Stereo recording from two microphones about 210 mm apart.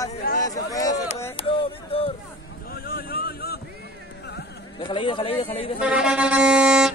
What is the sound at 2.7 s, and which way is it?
Boat, 45° left (ahead or behind).